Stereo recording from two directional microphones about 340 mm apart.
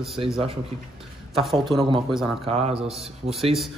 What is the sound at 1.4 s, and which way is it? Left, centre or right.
Speech, centre.